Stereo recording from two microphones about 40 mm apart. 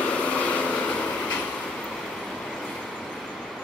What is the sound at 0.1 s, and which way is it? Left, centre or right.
Vehicle, left.